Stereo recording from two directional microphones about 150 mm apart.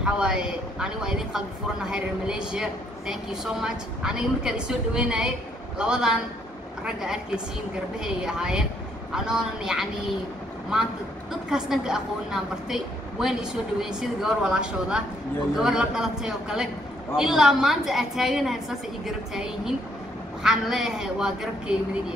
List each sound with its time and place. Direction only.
0.0 s a woman's voice: 5° right (ahead or behind)
11.5 s a woman's voice: 5° right (ahead or behind)